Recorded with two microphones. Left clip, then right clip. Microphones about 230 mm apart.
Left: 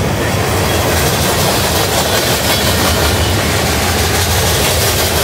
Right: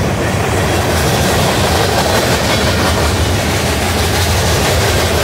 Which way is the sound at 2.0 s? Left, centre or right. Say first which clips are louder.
Right 1 dB; left.